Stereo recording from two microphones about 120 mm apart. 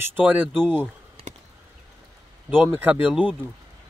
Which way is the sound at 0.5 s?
5° left (ahead or behind).